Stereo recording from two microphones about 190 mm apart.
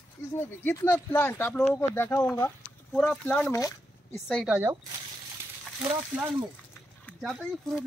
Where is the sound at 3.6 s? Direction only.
20° left (ahead or behind).